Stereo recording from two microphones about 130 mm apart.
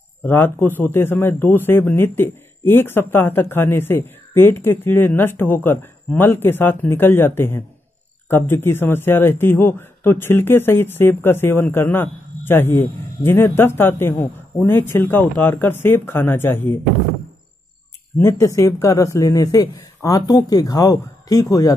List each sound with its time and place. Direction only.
0.2 s a man's voice: 15° left (ahead or behind)
18.1 s speech: 20° left (ahead or behind)